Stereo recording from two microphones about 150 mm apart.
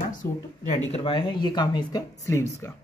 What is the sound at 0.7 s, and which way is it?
Speech, 40° left (ahead or behind).